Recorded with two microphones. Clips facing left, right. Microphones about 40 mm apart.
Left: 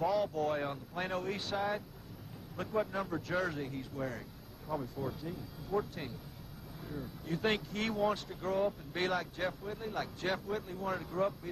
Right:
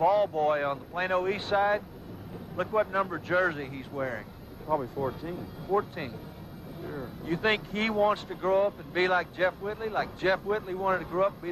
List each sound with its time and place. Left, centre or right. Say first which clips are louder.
0.0 s speech: right 8 dB; right